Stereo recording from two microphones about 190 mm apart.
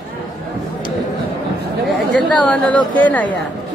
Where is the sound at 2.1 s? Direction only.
5° left (ahead or behind).